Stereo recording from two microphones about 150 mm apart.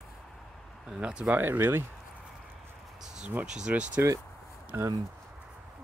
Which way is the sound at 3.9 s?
20° right (ahead or behind).